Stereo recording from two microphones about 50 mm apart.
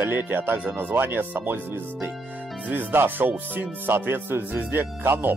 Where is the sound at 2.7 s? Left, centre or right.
Right.